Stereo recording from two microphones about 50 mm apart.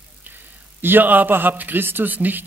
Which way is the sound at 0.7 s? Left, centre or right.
Right.